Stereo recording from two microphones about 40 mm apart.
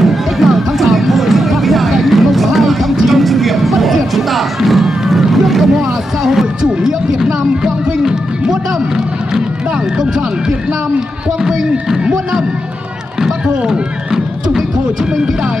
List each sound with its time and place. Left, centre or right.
0.0 s music: centre
3.1 s a sound: centre
4.1 s music: centre
6.6 s a sound: centre
7.2 s music: centre
13.7 s music: centre